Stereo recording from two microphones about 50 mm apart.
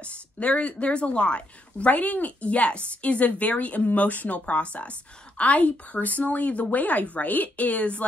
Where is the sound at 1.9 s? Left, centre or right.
Left.